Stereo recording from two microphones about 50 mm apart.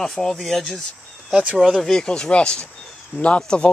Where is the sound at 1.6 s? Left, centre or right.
Centre.